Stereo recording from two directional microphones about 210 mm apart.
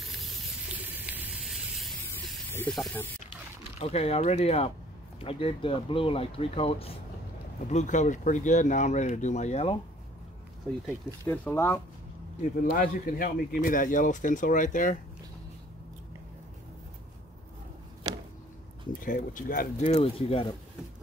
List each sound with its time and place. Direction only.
0.0 s spray: centre (ahead or behind)
2.5 s speech: 5° left (ahead or behind)
3.8 s speech: 30° left (ahead or behind)
11.2 s speech: 10° left (ahead or behind)
12.5 s speech: 40° left (ahead or behind)
18.1 s a sound: 15° right (ahead or behind)
18.9 s speech: 40° left (ahead or behind)